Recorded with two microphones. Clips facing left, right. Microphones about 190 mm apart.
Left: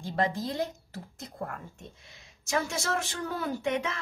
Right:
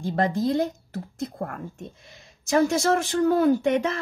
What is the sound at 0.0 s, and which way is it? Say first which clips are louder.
Speech: right 6 dB; 55° right (ahead or behind).